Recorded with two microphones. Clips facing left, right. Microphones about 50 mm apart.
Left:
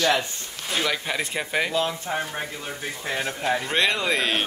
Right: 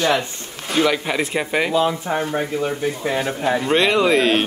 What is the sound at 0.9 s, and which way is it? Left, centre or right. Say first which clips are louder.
Speech: right 6 dB; centre.